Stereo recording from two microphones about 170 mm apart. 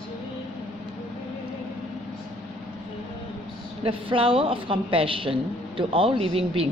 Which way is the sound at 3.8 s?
30° right (ahead or behind).